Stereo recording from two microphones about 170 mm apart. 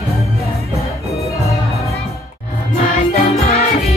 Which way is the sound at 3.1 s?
40° left (ahead or behind).